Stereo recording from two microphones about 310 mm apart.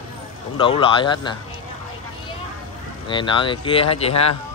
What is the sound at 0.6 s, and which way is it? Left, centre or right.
Speech, centre.